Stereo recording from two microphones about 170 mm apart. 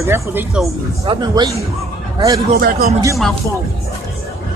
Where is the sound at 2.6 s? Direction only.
65° right (ahead or behind).